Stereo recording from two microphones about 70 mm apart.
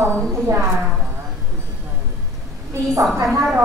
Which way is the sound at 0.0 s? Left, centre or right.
Right.